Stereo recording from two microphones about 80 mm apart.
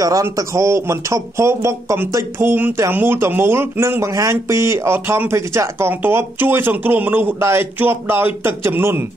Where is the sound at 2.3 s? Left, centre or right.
Right.